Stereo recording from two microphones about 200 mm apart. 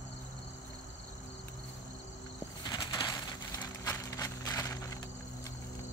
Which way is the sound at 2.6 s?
20° left (ahead or behind).